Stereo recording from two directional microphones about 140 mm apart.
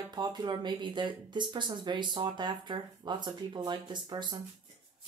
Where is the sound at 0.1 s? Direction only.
30° right (ahead or behind).